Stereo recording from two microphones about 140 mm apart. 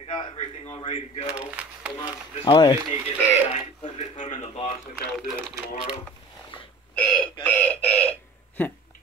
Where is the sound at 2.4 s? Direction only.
35° left (ahead or behind).